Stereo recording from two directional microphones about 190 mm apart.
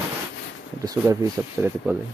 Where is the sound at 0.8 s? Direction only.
20° right (ahead or behind).